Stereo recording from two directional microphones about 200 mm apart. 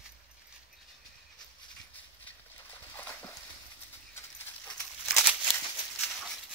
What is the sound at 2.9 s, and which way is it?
Horse, 10° left (ahead or behind).